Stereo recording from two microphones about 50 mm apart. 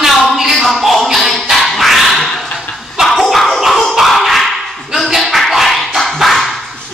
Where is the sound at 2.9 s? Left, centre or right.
Centre.